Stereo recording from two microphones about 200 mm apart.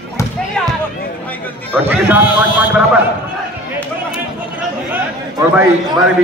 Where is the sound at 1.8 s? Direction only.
10° right (ahead or behind).